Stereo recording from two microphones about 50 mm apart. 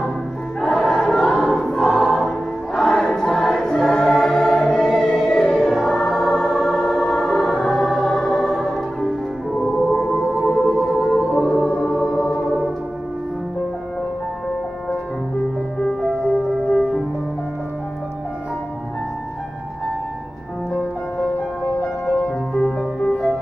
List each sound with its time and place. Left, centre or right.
0.6 s choir: centre
6.2 s music: centre
9.7 s gong: centre
10.6 s music: centre
16.6 s music: centre
22.5 s music: centre